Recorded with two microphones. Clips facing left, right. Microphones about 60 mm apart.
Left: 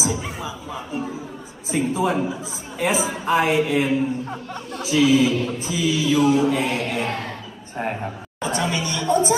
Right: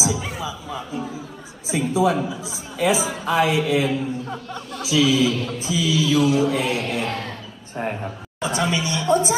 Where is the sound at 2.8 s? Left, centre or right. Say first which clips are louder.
Right 2 dB; left.